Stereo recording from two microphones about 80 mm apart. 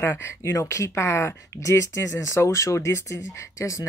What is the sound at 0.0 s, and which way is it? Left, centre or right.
Speech, left.